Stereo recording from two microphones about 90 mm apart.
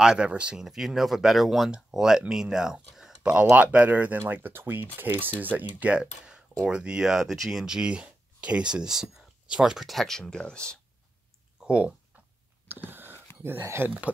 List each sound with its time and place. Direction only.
0.0 s speech: 10° right (ahead or behind); by 10.8 s 10° left (ahead or behind)
11.6 s speech: 15° right (ahead or behind)
12.6 s a sound: 20° right (ahead or behind)
13.4 s speech: 30° right (ahead or behind)